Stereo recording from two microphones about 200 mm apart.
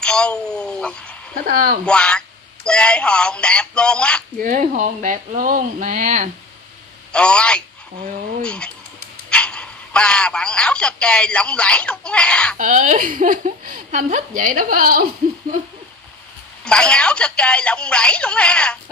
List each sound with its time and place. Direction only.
0.0 s speech: 5° left (ahead or behind)
1.5 s speech: 45° right (ahead or behind)
1.9 s speech: 5° left (ahead or behind)
4.4 s a woman's voice: 40° right (ahead or behind)
7.1 s a man's voice: 5° left (ahead or behind)
12.5 s a woman's voice: 40° right (ahead or behind)
16.6 s speech: 5° left (ahead or behind)